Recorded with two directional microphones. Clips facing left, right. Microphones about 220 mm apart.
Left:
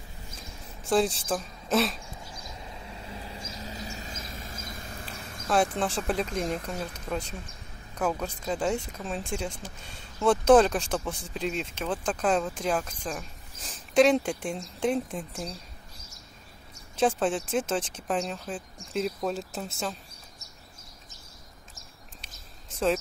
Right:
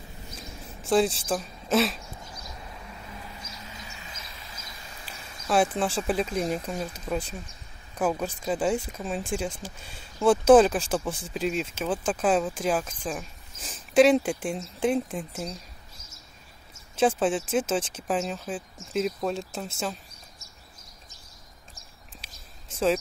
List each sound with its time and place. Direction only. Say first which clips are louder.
0.8 s speech: right 2 dB; centre (ahead or behind)
2.9 s vehicle: left 2 dB; 30° left (ahead or behind); by 5.0 s 55° left (ahead or behind)
5.5 s speech: right 2 dB; 5° right (ahead or behind)
16.9 s speech: right 2 dB; centre (ahead or behind)